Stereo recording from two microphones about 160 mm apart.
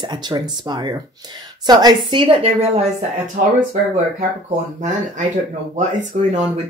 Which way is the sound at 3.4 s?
55° right (ahead or behind).